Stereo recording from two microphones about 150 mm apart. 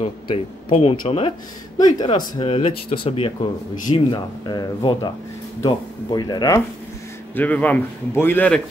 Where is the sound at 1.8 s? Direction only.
25° left (ahead or behind).